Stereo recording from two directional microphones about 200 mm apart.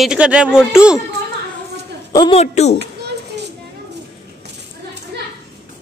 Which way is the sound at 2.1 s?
20° left (ahead or behind).